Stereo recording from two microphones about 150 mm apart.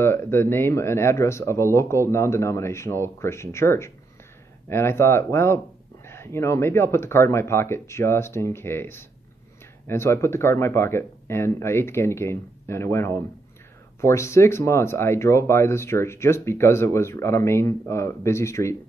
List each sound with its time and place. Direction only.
0.0 s speech: 15° left (ahead or behind)